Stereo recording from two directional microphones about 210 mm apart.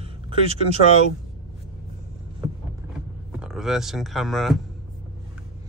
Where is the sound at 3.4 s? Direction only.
Centre (ahead or behind).